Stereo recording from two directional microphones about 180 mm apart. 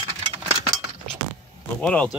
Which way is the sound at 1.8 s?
5° left (ahead or behind).